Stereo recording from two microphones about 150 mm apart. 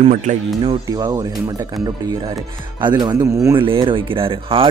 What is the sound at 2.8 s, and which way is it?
Speech, 30° right (ahead or behind).